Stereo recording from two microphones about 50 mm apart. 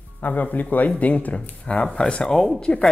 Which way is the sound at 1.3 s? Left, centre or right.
Centre.